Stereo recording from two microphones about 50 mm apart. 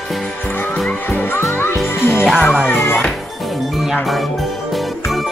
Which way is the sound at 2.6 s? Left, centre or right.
Left.